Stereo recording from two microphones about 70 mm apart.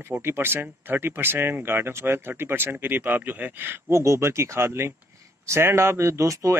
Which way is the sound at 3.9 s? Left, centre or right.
Right.